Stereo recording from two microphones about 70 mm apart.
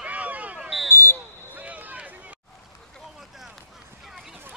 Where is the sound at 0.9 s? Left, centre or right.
Left.